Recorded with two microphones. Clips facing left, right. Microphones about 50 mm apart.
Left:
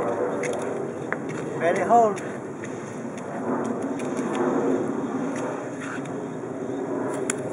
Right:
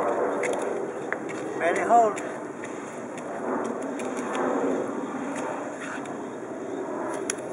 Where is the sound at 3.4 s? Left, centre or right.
Centre.